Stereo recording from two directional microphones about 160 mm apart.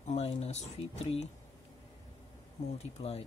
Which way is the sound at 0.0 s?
40° left (ahead or behind).